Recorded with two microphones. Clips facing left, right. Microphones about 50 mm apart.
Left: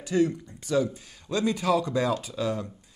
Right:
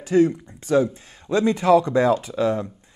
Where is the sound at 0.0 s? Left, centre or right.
Right.